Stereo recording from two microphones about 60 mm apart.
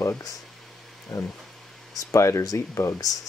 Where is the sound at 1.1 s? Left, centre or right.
Left.